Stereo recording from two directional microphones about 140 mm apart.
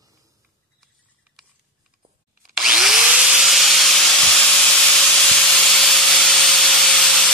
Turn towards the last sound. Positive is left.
turn(degrees=0)  # may be behind; listen again after turning